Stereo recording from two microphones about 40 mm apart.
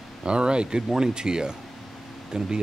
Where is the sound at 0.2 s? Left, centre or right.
Right.